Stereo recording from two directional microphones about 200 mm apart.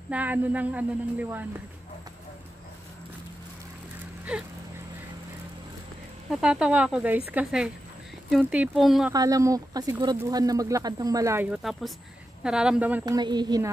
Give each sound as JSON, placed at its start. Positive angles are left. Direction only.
{"t": 0.1, "sound": "speech", "side_deg": -10}
{"t": 4.3, "sound": "speech", "side_deg": -5}
{"t": 6.3, "sound": "speech", "side_deg": -5}
{"t": 9.1, "sound": "speech", "side_deg": -15}
{"t": 13.0, "sound": "speech", "side_deg": -20}